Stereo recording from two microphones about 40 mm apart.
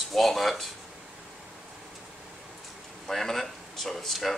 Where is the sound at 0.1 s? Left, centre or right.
Centre.